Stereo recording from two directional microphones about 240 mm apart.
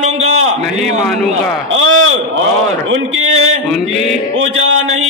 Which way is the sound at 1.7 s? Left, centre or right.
Right.